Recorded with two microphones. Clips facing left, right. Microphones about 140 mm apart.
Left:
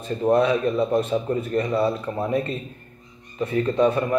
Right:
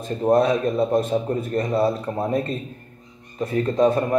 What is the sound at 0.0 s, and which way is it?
A man's voice, 40° right (ahead or behind).